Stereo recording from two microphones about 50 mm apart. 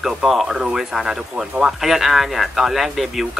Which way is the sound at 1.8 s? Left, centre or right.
Centre.